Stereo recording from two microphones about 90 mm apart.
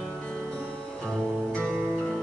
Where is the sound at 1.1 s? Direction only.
10° left (ahead or behind).